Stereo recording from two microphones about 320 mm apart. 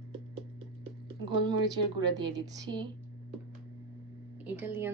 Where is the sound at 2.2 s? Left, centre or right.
Centre.